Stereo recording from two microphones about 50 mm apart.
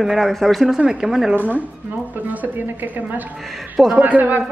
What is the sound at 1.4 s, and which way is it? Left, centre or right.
A man's voice, right.